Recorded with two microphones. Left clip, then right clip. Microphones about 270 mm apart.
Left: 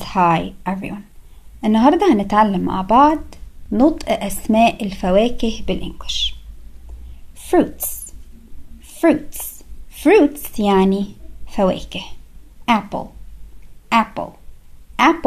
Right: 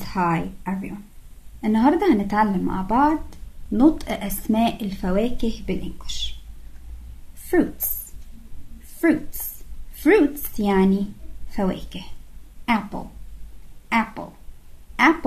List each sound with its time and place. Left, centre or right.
0.0 s a woman's voice: left
7.4 s speech: centre
9.0 s a woman's voice: centre